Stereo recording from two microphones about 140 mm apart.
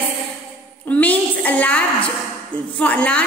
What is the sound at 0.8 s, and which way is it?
A woman's voice, 10° left (ahead or behind).